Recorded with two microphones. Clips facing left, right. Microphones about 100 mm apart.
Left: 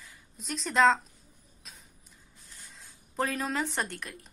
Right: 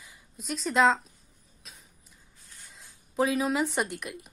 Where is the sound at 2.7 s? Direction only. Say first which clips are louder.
Right 4 dB; 5° right (ahead or behind).